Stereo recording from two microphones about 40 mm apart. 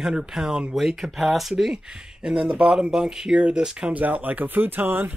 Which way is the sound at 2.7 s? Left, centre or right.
Centre.